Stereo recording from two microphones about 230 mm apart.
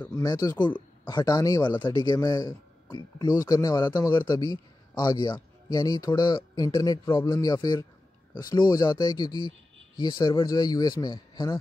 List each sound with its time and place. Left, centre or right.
0.0 s speech: centre